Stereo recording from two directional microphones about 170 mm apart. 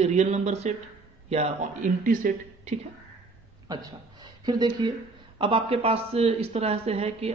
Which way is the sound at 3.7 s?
20° right (ahead or behind).